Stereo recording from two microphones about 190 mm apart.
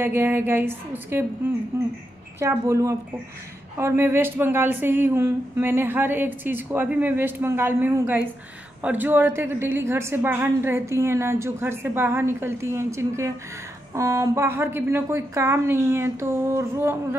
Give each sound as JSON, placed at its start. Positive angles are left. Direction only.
{"t": 0.0, "sound": "speech", "side_deg": -10}